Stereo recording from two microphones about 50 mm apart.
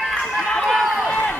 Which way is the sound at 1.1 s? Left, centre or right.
Left.